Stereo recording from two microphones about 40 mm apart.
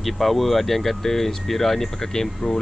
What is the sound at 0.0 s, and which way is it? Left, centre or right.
Speech, centre.